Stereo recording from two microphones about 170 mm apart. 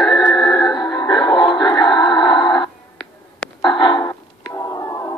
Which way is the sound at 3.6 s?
30° left (ahead or behind).